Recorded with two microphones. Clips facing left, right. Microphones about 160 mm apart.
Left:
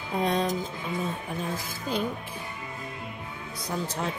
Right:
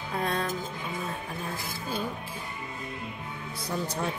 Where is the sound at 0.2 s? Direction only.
20° left (ahead or behind).